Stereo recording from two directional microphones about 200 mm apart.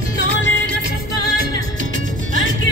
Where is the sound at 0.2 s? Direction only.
65° left (ahead or behind).